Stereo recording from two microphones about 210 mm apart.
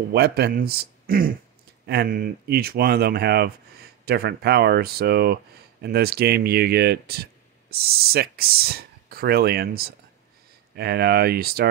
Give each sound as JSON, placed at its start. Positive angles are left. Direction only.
{"t": 0.1, "sound": "speech", "side_deg": -50}